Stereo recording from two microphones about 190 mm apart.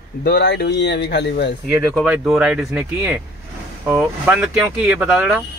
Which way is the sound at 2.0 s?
5° right (ahead or behind).